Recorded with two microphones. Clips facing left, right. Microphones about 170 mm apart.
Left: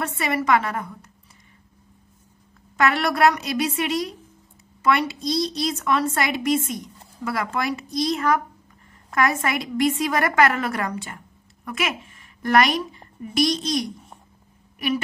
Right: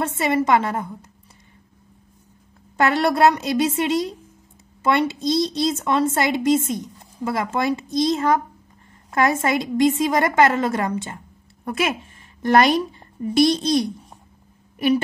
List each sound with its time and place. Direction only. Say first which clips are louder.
0.0 s a woman's voice: right 4 dB; 25° right (ahead or behind)
2.8 s a woman's voice: right 2 dB; 30° right (ahead or behind)